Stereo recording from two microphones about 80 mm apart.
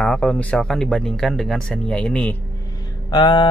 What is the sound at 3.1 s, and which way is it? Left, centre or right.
Music, left.